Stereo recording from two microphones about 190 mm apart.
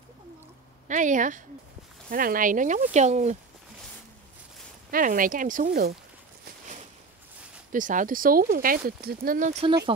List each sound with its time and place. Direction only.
0.8 s speech: 40° right (ahead or behind)
4.9 s speech: 45° right (ahead or behind)
7.7 s speech: 45° right (ahead or behind)